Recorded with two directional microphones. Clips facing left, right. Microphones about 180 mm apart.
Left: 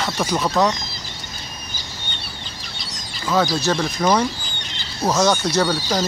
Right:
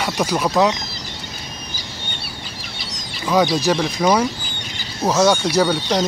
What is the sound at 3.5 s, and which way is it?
Speech, 15° right (ahead or behind).